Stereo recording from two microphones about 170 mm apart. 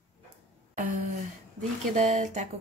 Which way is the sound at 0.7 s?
50° right (ahead or behind).